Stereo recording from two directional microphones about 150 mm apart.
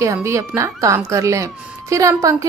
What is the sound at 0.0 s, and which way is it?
Speech, 20° right (ahead or behind).